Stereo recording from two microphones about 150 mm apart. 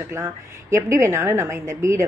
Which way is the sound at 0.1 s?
20° right (ahead or behind).